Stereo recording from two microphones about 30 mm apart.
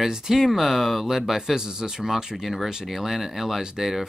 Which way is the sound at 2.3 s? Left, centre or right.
Centre.